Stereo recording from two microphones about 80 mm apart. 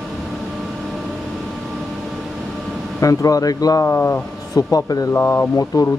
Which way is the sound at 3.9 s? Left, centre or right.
Left.